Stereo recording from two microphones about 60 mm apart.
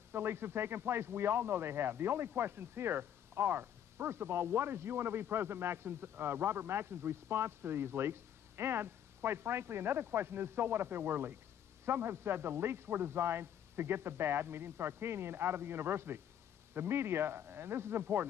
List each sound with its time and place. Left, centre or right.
0.1 s speech: right